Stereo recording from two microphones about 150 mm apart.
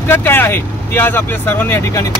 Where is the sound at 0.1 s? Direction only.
15° left (ahead or behind).